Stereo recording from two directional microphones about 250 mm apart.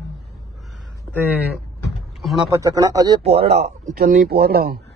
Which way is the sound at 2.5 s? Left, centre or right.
Centre.